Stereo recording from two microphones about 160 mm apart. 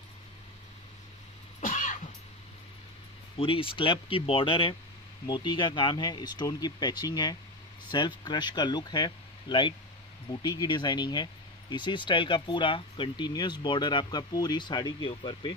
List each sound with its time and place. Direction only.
1.6 s music: 55° left (ahead or behind)
3.3 s speech: 35° left (ahead or behind)